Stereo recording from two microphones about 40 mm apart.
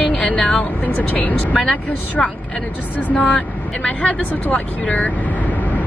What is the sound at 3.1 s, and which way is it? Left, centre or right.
Speech, left.